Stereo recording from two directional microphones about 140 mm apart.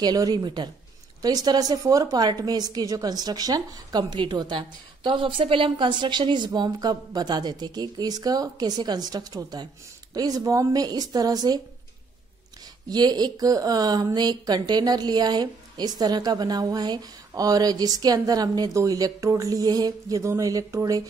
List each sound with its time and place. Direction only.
0.0 s a woman's voice: 30° right (ahead or behind)
12.9 s a woman's voice: 30° right (ahead or behind)